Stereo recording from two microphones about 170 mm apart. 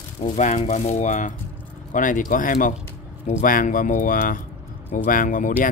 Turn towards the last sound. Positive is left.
turn(degrees=50)  # may be behind; listen again after turning